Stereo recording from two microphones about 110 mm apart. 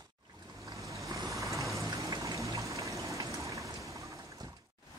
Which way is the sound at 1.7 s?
30° right (ahead or behind).